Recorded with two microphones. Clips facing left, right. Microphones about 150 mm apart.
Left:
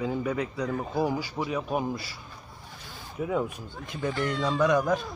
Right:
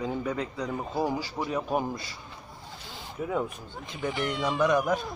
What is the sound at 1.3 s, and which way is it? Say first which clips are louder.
Speech: even; centre (ahead or behind).